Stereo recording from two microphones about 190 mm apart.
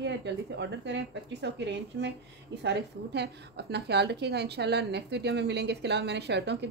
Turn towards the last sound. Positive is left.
turn(degrees=-65)  # may be behind; listen again after turning